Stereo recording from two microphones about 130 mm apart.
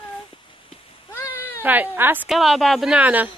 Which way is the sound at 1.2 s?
15° left (ahead or behind).